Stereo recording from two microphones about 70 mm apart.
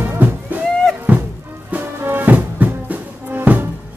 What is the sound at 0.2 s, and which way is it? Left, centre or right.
Music, right.